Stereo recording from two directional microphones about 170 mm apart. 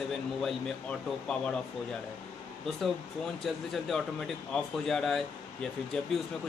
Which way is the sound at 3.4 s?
Centre (ahead or behind).